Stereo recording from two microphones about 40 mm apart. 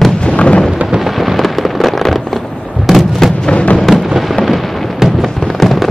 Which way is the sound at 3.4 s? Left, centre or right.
Left.